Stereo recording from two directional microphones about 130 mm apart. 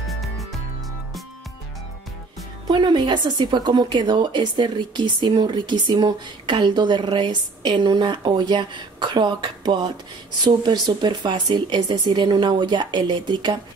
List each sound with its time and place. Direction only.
0.1 s music: centre (ahead or behind)
2.7 s a woman's voice: 35° right (ahead or behind)